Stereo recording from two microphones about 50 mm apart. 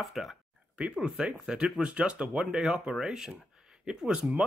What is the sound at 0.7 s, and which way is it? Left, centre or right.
Speech, centre.